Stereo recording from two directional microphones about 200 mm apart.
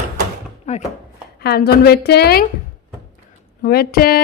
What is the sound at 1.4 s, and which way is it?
A woman's voice, 50° left (ahead or behind).